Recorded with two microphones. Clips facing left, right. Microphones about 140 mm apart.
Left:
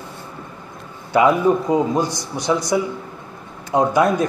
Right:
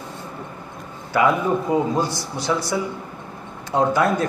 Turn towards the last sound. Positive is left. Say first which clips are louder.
# left 2 dB
turn(degrees=15)  # may be behind; listen again after turning